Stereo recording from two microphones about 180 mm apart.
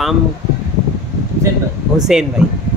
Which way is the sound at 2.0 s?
5° right (ahead or behind).